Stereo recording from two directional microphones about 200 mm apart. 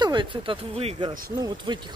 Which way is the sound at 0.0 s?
25° right (ahead or behind).